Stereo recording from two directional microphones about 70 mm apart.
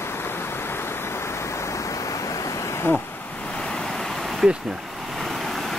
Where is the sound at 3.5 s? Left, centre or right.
Centre.